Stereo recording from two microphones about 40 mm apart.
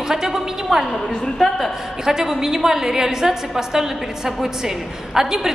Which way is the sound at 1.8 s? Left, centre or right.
Centre.